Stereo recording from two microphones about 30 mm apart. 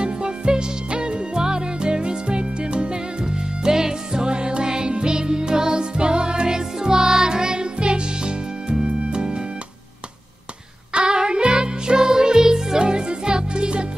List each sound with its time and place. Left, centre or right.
0.0 s music: right
10.9 s music: right